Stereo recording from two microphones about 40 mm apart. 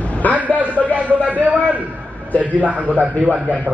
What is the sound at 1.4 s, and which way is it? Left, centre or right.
Speech, right.